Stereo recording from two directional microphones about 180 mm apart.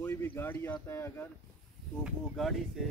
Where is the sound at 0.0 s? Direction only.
10° left (ahead or behind).